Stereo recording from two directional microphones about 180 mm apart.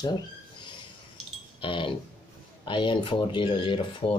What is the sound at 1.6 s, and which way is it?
Speech, 30° left (ahead or behind).